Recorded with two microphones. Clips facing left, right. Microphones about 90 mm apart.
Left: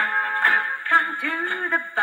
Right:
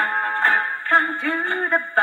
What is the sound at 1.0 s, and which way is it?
Music, 60° right (ahead or behind).